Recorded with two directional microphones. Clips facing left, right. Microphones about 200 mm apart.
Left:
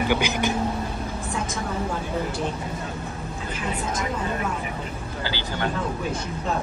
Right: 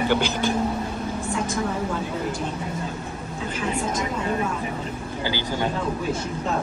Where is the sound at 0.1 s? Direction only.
15° left (ahead or behind).